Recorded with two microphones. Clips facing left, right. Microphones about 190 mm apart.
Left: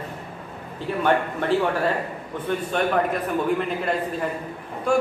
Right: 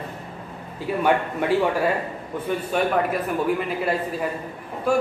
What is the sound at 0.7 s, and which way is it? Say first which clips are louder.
A man's voice: right 1 dB; 10° right (ahead or behind).